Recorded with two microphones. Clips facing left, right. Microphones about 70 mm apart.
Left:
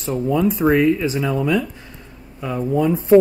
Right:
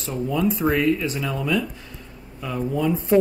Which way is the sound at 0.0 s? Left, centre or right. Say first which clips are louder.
Left 4 dB; centre.